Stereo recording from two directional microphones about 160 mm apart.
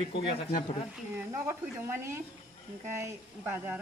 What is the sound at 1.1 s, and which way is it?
A woman's voice, 15° right (ahead or behind).